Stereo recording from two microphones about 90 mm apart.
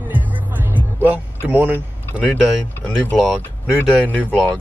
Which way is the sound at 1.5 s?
20° right (ahead or behind).